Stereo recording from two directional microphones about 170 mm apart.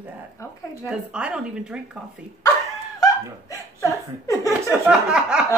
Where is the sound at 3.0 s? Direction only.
15° left (ahead or behind).